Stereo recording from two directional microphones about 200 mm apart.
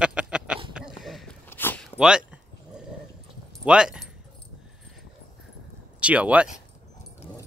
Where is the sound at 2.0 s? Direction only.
5° right (ahead or behind).